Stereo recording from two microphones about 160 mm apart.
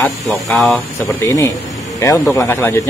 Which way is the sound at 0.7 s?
20° left (ahead or behind).